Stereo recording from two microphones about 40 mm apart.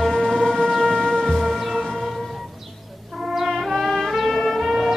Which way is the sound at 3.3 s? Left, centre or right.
Centre.